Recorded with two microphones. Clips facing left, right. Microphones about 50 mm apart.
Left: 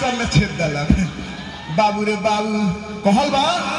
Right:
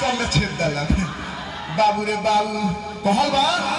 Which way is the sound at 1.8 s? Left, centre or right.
Left.